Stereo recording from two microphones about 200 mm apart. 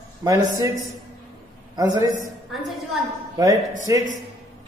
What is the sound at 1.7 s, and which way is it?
Speech, 20° right (ahead or behind).